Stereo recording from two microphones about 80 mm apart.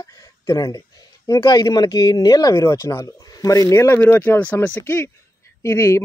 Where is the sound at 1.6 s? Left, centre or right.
Left.